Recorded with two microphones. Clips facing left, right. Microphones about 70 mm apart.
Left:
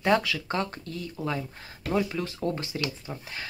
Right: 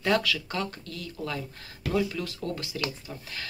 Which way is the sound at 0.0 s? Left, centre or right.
Left.